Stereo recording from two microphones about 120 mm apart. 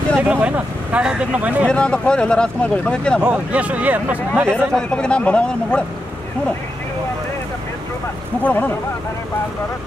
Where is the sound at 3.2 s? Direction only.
10° right (ahead or behind).